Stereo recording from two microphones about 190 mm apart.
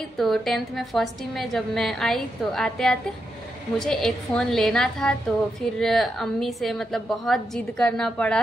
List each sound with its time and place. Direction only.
0.2 s a woman's voice: centre (ahead or behind)